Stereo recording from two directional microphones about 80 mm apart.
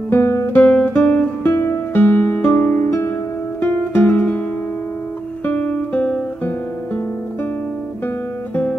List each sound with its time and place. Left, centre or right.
0.1 s guitar: left
0.5 s guitar: left
1.5 s music: left
5.4 s guitar: left